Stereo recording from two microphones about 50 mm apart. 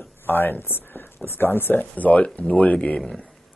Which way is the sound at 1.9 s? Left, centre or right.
Left.